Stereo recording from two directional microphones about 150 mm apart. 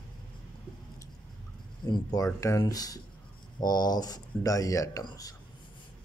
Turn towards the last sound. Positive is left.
turn(degrees=25)  # may be behind; listen again after turning